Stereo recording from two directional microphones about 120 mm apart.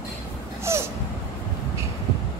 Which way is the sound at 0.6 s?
20° right (ahead or behind).